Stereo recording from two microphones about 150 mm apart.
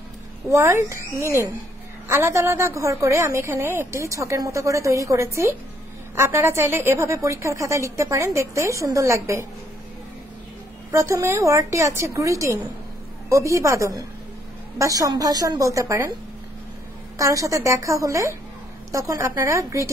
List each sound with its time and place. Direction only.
0.5 s a woman's voice: 20° right (ahead or behind)
10.9 s a woman's voice: 20° right (ahead or behind)
17.2 s a woman's voice: 20° right (ahead or behind)